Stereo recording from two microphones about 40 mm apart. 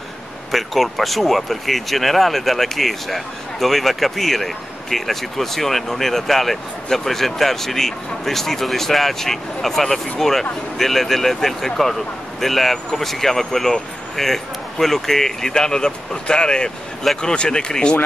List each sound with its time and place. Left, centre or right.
0.5 s speech: centre